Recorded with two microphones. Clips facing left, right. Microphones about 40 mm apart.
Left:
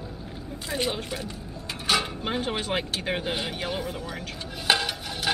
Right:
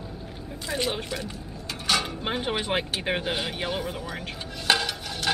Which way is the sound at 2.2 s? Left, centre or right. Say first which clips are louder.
Even; centre.